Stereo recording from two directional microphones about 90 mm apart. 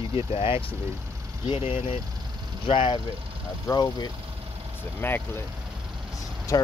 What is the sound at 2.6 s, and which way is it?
Speech, 75° left (ahead or behind).